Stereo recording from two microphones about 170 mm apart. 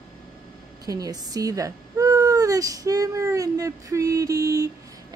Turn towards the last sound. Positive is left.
turn(degrees=-20)  # may be behind; listen again after turning